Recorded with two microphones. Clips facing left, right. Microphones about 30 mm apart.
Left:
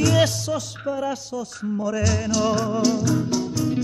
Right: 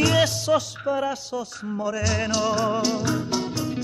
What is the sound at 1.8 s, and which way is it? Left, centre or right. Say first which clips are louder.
Music: even; centre.